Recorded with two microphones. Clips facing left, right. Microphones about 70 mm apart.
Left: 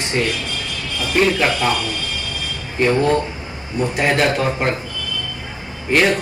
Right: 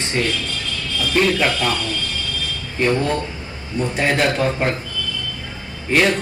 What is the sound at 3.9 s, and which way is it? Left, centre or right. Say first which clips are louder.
Speech: left 1 dB; centre.